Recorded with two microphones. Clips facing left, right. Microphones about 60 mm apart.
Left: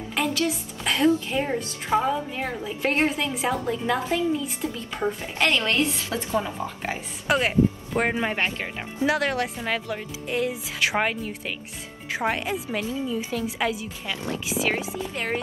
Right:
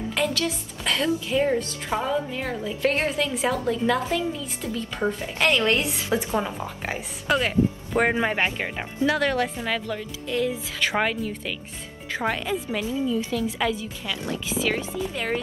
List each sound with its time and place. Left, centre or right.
0.1 s a woman's voice: centre
1.9 s a woman's voice: centre
2.3 s a woman's voice: left
5.0 s a woman's voice: centre
5.7 s a woman's voice: centre
7.2 s speech: centre
7.9 s a woman's voice: centre
9.0 s speech: centre
9.9 s a woman's voice: left
10.4 s a woman's voice: centre
14.1 s a woman's voice: left
14.7 s a woman's voice: centre